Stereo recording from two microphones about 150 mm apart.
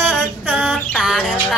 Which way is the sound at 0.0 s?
5° left (ahead or behind).